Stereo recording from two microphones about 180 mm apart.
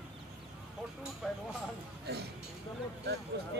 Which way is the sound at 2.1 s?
60° right (ahead or behind).